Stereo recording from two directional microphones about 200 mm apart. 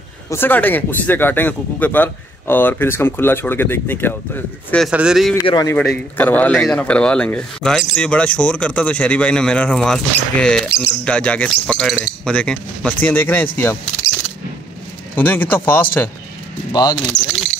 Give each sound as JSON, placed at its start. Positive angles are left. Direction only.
{"t": 0.3, "sound": "speech", "side_deg": 10}
{"t": 5.4, "sound": "a man's voice", "side_deg": 20}
{"t": 5.8, "sound": "speech", "side_deg": 10}
{"t": 15.1, "sound": "speech", "side_deg": 10}